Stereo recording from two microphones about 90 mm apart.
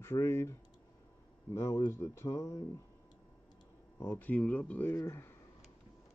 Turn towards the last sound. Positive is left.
turn(degrees=30)  # may be behind; listen again after turning